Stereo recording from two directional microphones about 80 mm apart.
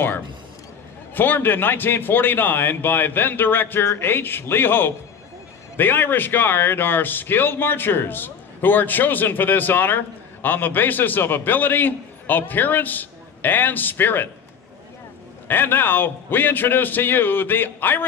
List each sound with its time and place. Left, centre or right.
1.1 s a man's voice: left
15.4 s a man's voice: left